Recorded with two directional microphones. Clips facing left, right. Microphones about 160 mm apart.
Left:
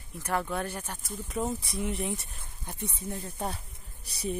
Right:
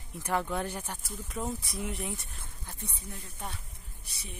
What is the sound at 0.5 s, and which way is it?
Speech, 15° right (ahead or behind).